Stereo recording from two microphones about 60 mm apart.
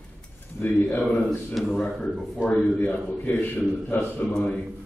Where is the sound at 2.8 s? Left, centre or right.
Left.